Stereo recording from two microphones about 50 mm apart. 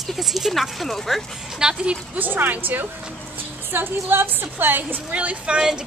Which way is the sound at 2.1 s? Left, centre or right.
Right.